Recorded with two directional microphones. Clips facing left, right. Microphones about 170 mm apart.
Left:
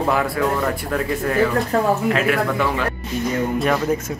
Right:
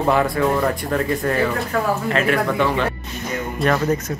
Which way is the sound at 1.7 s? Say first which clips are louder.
Left 3 dB; 35° left (ahead or behind).